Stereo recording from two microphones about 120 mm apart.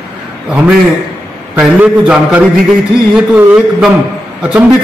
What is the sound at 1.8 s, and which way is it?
A man's voice, 10° right (ahead or behind).